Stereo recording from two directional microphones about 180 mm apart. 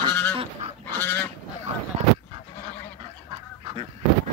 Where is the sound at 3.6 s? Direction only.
30° right (ahead or behind).